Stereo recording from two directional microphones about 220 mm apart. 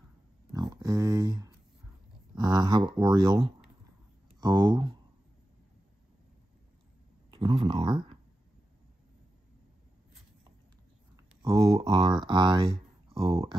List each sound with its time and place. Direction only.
0.5 s a sound: 15° right (ahead or behind)
2.3 s speech: 15° right (ahead or behind)
4.4 s speech: 20° right (ahead or behind)
7.2 s speech: 20° right (ahead or behind)
11.4 s speech: 15° right (ahead or behind)